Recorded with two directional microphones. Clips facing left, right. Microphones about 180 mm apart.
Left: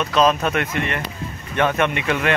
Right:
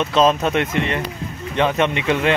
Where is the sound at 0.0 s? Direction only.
25° right (ahead or behind).